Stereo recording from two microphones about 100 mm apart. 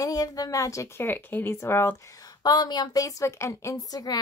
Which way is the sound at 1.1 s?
20° left (ahead or behind).